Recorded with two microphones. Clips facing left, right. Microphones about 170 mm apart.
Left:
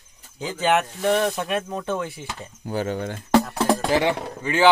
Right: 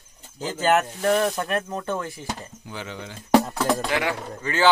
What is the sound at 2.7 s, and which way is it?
Speech, 45° left (ahead or behind).